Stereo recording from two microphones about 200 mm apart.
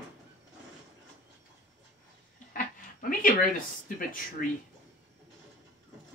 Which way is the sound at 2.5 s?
45° left (ahead or behind).